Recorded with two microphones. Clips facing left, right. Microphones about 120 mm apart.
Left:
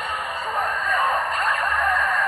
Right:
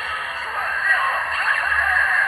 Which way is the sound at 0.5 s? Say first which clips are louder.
Left 1 dB; 25° left (ahead or behind).